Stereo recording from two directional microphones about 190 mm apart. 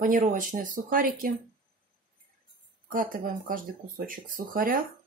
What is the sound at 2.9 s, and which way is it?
Speech, 45° right (ahead or behind).